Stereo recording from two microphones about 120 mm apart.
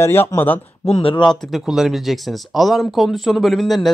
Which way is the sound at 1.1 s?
40° left (ahead or behind).